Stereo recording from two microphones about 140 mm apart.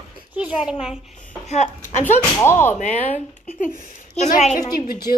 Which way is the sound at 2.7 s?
60° left (ahead or behind).